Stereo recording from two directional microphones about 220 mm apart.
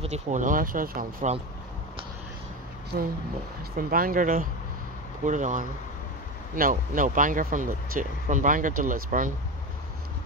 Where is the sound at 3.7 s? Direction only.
40° right (ahead or behind).